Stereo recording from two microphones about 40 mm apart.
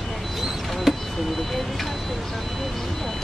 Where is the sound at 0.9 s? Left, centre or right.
Centre.